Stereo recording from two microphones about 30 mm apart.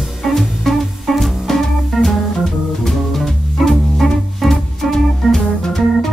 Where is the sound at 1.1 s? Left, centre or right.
Centre.